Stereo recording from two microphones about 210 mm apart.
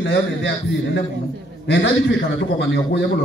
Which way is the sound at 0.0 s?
60° left (ahead or behind).